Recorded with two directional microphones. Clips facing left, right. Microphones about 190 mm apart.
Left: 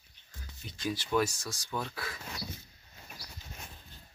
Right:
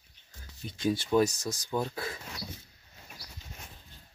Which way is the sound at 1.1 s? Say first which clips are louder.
Right 3 dB; 30° right (ahead or behind).